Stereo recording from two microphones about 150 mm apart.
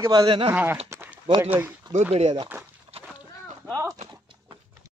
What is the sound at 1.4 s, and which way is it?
Speech, 15° right (ahead or behind).